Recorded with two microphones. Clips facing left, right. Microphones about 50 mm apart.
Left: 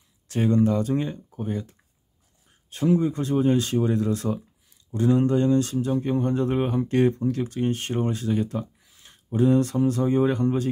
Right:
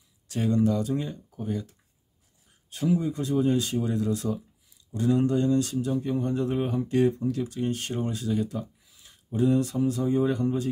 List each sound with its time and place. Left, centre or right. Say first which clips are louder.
0.3 s speech: left 3 dB; left